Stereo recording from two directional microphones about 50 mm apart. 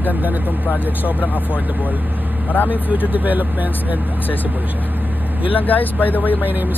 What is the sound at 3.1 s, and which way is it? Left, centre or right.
Speech, right.